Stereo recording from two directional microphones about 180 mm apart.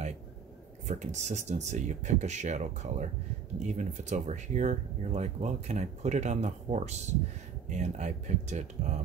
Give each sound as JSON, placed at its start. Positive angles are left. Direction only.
{"t": 0.8, "sound": "speech", "side_deg": -40}